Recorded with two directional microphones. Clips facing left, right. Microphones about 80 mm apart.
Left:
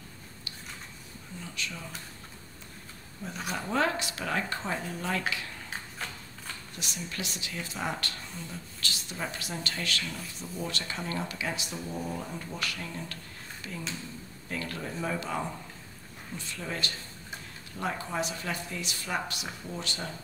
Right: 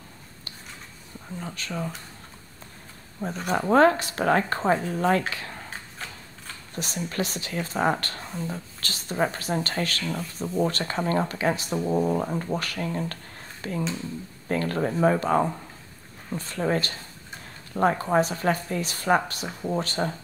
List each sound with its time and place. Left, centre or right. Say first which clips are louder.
1.4 s speech: right 7 dB; right
3.2 s speech: right 9 dB; right
6.0 s typewriter: even; centre
6.7 s speech: right 10 dB; right